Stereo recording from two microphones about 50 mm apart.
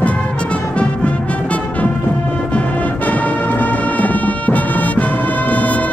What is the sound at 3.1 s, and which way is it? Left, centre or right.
Music, left.